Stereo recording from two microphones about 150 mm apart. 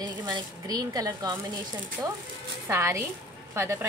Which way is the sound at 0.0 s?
30° right (ahead or behind).